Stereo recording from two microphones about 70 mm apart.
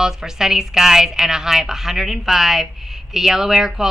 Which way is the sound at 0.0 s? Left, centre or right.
Centre.